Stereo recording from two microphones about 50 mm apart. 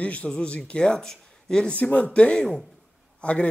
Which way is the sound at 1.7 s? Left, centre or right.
Left.